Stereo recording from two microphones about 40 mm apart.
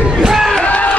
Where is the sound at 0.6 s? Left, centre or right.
Left.